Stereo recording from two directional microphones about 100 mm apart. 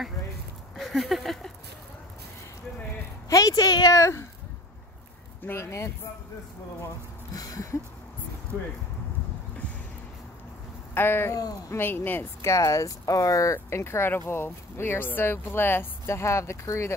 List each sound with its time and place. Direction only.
0.7 s a sound: centre (ahead or behind)
3.3 s speech: 35° left (ahead or behind)
5.4 s speech: 25° left (ahead or behind)
7.3 s a sound: 35° left (ahead or behind)
11.0 s speech: 20° left (ahead or behind)
12.4 s speech: 30° left (ahead or behind)